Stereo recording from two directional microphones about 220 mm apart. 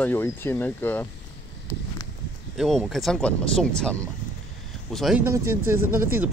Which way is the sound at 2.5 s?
Centre (ahead or behind).